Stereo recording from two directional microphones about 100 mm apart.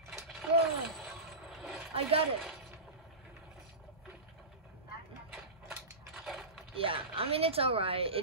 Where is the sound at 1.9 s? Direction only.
75° right (ahead or behind).